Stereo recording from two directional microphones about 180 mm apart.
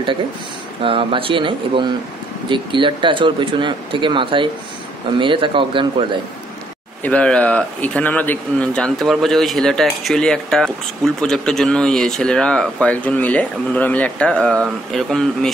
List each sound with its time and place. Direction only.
0.8 s speech: 30° right (ahead or behind)
7.0 s speech: 5° left (ahead or behind)